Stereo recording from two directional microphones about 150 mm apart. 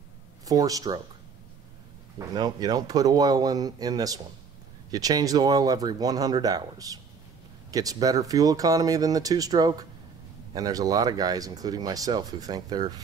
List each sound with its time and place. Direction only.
0.5 s speech: 25° right (ahead or behind)
2.1 s speech: 25° right (ahead or behind)